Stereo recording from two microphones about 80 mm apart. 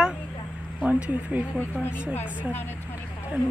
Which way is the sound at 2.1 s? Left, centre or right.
Left.